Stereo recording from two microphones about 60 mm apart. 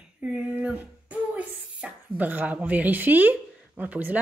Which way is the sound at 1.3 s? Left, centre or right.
Right.